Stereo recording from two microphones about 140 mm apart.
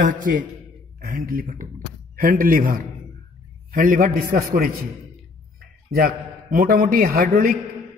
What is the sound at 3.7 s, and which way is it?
A man's voice, 80° right.